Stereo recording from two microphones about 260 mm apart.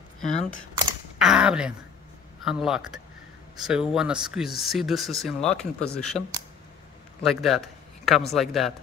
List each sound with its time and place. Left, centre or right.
0.3 s speech: left
1.1 s a sound: centre
2.4 s speech: centre
7.2 s a man's voice: centre